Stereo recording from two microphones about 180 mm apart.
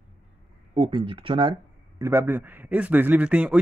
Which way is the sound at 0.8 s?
25° right (ahead or behind).